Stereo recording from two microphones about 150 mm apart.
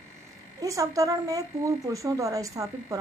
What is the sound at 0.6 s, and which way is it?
A woman's voice, 20° right (ahead or behind).